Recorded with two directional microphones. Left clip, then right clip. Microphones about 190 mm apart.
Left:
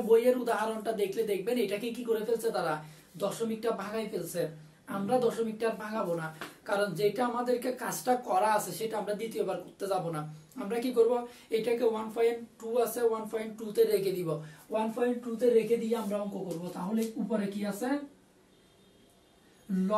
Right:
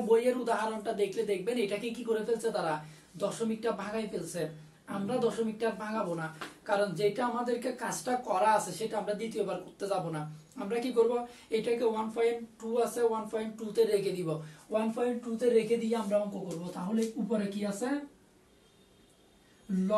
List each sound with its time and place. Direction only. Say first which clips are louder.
0.0 s speech: left 2 dB; 15° left (ahead or behind)
14.7 s speech: left 1 dB; centre (ahead or behind)